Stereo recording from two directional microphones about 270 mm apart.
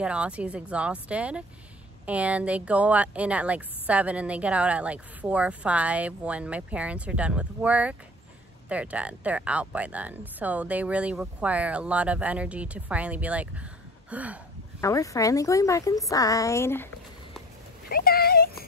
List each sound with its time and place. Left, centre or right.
0.0 s speech: centre
14.8 s a woman's voice: centre
17.8 s speech: left